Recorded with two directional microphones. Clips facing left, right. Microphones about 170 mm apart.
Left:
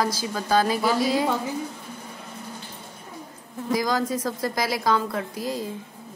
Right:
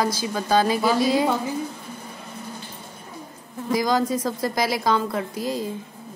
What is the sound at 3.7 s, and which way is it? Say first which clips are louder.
A woman's voice: right 3 dB; 20° right (ahead or behind).